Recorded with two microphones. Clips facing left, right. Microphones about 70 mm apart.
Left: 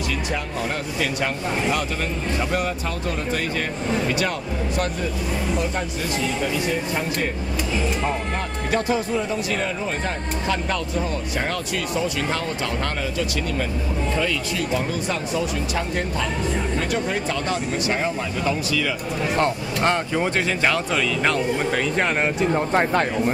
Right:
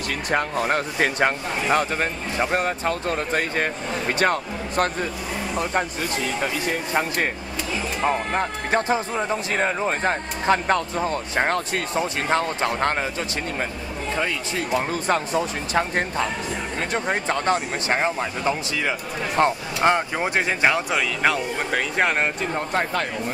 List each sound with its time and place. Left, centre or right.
0.3 s speech: right
6.4 s speech: right
8.0 s speech: right
14.9 s speech: right; by 22.3 s centre
22.7 s speech: left